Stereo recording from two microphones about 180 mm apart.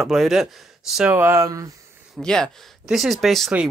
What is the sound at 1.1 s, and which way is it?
Speech, 15° right (ahead or behind).